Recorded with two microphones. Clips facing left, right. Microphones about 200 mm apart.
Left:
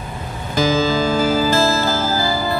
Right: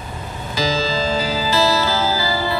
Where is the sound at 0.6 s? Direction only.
50° left (ahead or behind).